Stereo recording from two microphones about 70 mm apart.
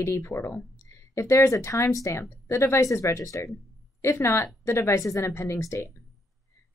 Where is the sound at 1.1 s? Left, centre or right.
Left.